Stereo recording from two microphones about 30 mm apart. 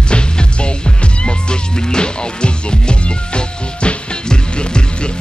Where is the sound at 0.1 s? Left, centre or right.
Left.